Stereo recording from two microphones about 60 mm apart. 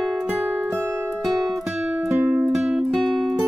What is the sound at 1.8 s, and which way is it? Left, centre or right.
Music, right.